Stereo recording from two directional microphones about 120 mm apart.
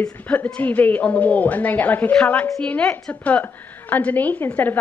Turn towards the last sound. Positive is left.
turn(degrees=15)  # may be behind; listen again after turning